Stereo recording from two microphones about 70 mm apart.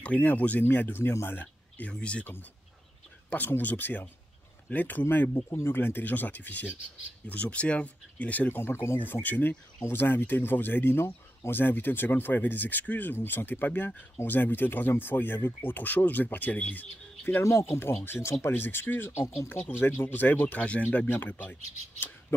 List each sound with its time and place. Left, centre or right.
0.0 s speech: left
3.3 s speech: left
17.2 s speech: left
17.5 s speech: left
18.0 s speech: left
19.5 s speech: left